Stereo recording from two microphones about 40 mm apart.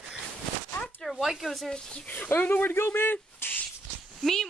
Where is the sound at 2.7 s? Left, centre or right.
Left.